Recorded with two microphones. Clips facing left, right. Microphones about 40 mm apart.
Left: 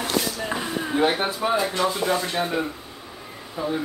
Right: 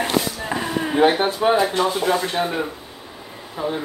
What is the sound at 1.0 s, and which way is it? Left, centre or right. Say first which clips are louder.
Speech: right 5 dB; right.